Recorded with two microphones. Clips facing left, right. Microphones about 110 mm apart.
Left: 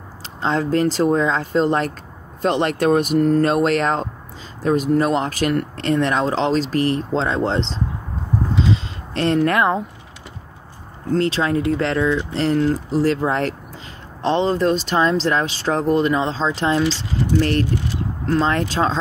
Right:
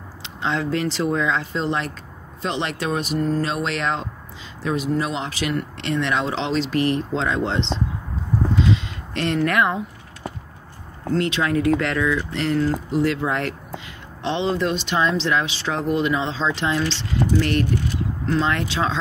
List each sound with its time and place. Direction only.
0.2 s speech: 40° left (ahead or behind)
8.7 s a sound: 35° left (ahead or behind)
11.1 s speech: 35° left (ahead or behind)